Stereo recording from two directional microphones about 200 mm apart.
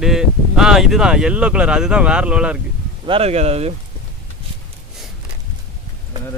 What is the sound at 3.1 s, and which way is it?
Speech, 30° right (ahead or behind).